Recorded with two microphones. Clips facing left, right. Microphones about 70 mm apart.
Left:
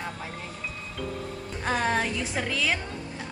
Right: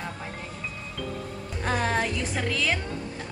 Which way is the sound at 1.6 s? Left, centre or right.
Centre.